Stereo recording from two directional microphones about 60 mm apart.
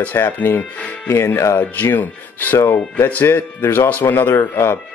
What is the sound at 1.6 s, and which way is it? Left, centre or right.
Speech, left.